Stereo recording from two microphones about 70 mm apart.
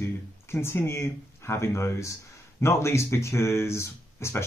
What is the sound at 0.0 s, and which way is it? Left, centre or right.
Speech, left.